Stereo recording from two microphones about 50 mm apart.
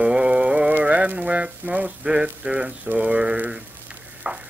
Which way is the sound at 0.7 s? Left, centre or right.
Right.